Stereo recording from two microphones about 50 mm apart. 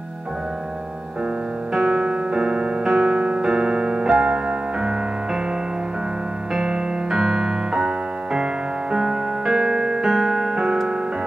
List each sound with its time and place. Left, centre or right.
1.7 s piano: centre
6.5 s music: centre